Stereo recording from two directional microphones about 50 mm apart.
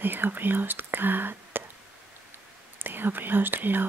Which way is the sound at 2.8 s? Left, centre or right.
Right.